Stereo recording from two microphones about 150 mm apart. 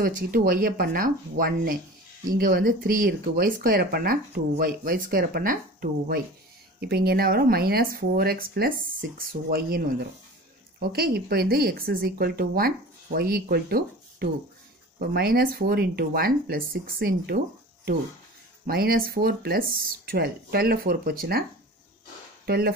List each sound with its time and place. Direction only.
0.0 s speech: 70° right (ahead or behind)
6.8 s speech: 90° right
9.5 s speech: 90° right
18.7 s speech: 90° right